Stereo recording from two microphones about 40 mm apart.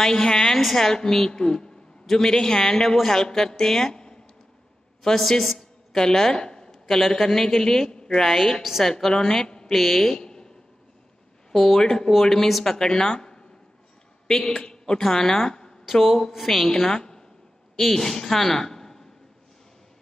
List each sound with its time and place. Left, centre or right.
0.4 s a woman's voice: centre
0.9 s a woman's voice: centre
3.9 s a sound: centre
5.0 s a woman's voice: centre
7.9 s a sound: centre
8.2 s a woman's voice: centre
9.7 s a woman's voice: centre
11.5 s a woman's voice: centre
15.8 s a woman's voice: centre
17.7 s a woman's voice: centre
18.0 s a woman's voice: centre